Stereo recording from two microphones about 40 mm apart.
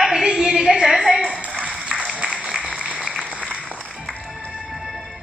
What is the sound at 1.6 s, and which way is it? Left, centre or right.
Music, right.